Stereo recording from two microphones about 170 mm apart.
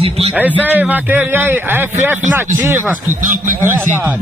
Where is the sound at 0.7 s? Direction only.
10° right (ahead or behind).